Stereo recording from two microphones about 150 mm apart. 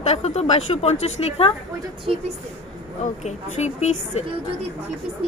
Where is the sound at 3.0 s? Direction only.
50° left (ahead or behind).